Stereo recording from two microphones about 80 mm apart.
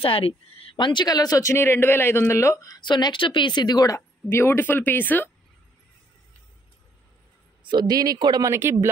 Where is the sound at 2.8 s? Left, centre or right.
Left.